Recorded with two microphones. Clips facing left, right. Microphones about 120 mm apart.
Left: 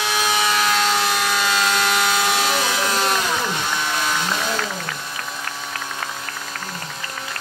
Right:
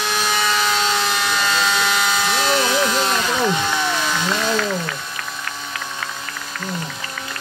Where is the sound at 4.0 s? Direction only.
5° left (ahead or behind).